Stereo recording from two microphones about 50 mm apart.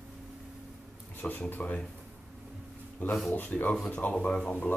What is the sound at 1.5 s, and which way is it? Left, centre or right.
Speech, left.